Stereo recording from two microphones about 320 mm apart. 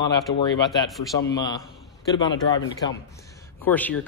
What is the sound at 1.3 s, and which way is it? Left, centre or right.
Speech, centre.